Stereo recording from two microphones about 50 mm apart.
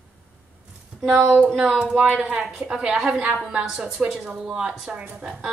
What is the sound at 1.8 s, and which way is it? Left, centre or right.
A woman's voice, centre.